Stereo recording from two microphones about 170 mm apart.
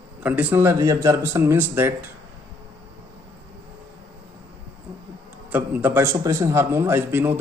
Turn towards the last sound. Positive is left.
turn(degrees=-15)  # may be behind; listen again after turning